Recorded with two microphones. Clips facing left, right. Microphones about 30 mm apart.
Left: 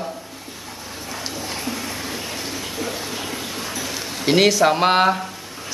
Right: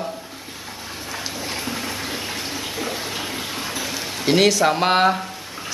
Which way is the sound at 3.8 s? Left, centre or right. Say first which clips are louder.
Even; centre.